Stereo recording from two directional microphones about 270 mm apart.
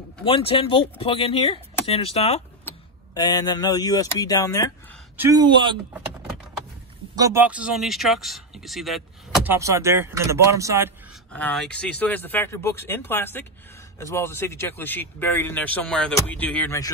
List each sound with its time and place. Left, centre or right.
0.2 s speech: left
5.1 s speech: centre
7.2 s speech: centre
11.3 s speech: centre